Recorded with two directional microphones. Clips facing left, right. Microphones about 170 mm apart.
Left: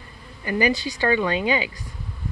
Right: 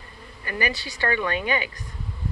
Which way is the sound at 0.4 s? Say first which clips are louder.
Left 7 dB; 15° left (ahead or behind).